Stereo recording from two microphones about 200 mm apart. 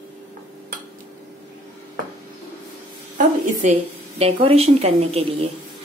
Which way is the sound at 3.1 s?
35° right (ahead or behind).